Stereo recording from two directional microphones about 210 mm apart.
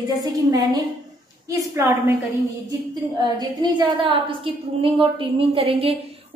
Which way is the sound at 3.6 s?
25° right (ahead or behind).